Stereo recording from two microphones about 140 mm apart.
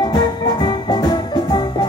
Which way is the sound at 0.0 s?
30° left (ahead or behind).